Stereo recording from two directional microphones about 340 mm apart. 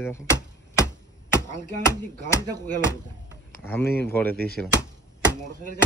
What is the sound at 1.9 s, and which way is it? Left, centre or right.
Speech, centre.